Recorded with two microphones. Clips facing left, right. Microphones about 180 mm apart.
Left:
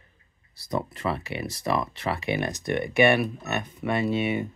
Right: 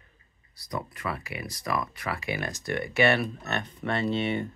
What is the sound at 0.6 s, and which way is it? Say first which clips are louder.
Speech: left 5 dB; 25° left (ahead or behind).